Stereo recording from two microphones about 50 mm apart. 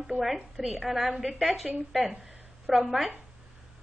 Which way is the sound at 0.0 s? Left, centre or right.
Centre.